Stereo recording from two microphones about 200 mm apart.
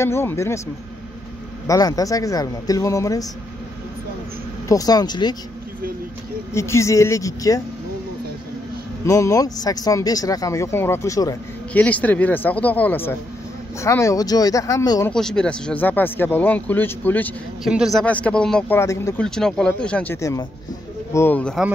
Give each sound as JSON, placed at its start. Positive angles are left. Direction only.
{"t": 0.0, "sound": "speech", "side_deg": 10}
{"t": 1.7, "sound": "speech", "side_deg": 20}
{"t": 4.6, "sound": "speech", "side_deg": 20}
{"t": 6.5, "sound": "speech", "side_deg": 15}
{"t": 9.0, "sound": "speech", "side_deg": 15}
{"t": 15.1, "sound": "speech", "side_deg": 5}
{"t": 17.6, "sound": "speech", "side_deg": 0}